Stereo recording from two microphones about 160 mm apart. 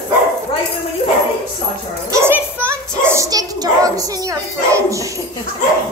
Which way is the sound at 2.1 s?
15° right (ahead or behind).